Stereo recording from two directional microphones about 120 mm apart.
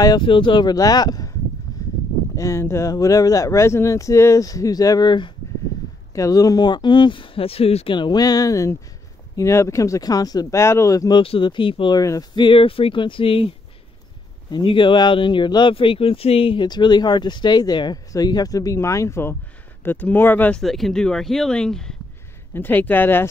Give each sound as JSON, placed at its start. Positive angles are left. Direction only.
{"t": 0.0, "sound": "speech", "side_deg": 35}
{"t": 0.3, "sound": "speech", "side_deg": 45}
{"t": 1.7, "sound": "a sound", "side_deg": 30}
{"t": 2.3, "sound": "speech", "side_deg": 25}
{"t": 6.1, "sound": "speech", "side_deg": 30}
{"t": 11.1, "sound": "speech", "side_deg": 45}
{"t": 12.0, "sound": "speech", "side_deg": 30}
{"t": 14.5, "sound": "speech", "side_deg": 45}
{"t": 20.6, "sound": "speech", "side_deg": 0}
{"t": 22.5, "sound": "speech", "side_deg": 15}